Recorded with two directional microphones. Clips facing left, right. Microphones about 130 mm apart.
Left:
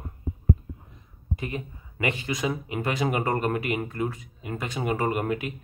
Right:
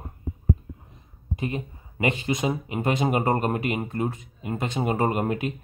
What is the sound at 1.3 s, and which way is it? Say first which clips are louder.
Speech: right 3 dB; 25° right (ahead or behind).